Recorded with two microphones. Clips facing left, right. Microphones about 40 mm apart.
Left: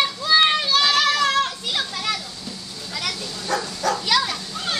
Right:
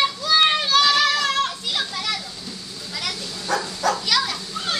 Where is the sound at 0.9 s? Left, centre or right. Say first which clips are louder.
Even; centre.